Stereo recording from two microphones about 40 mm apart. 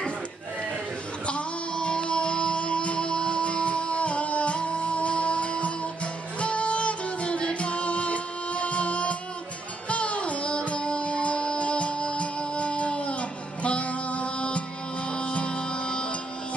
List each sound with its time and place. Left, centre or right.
1.2 s music: left